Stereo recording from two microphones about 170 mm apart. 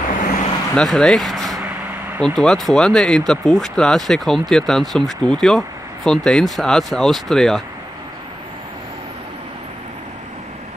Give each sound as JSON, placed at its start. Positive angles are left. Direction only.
{"t": 0.1, "sound": "vehicle", "side_deg": 50}
{"t": 0.7, "sound": "speech", "side_deg": 5}